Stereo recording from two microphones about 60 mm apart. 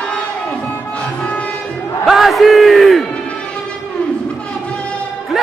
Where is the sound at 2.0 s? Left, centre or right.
Centre.